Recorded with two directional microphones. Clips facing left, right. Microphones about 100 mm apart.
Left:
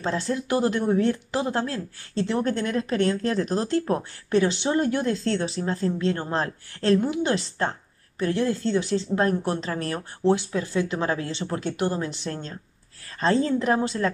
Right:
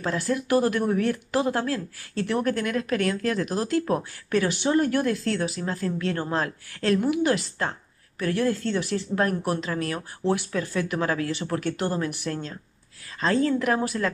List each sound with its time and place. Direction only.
0.0 s speech: 25° left (ahead or behind)
10.2 s speech: 20° left (ahead or behind)